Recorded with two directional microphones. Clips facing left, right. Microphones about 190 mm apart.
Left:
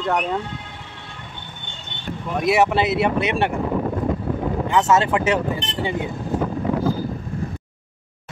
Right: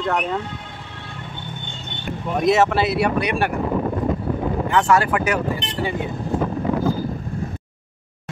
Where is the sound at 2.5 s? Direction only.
15° left (ahead or behind).